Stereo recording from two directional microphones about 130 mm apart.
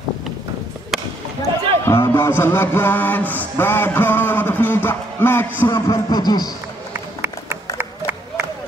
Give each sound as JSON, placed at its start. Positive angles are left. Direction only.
{"t": 0.9, "sound": "a sound", "side_deg": 0}
{"t": 1.5, "sound": "music", "side_deg": -35}
{"t": 1.9, "sound": "music", "side_deg": 20}
{"t": 5.7, "sound": "speech", "side_deg": 30}